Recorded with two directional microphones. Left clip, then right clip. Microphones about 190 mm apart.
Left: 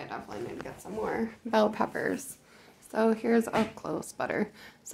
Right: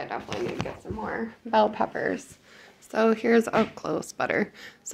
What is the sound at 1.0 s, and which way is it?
Speech, 20° left (ahead or behind).